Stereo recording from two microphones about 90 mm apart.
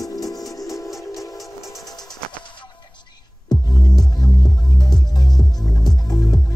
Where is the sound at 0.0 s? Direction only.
40° left (ahead or behind).